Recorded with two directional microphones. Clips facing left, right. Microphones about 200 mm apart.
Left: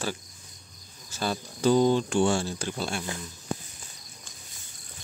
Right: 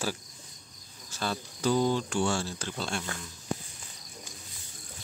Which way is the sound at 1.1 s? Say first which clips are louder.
Left 3 dB; 10° left (ahead or behind).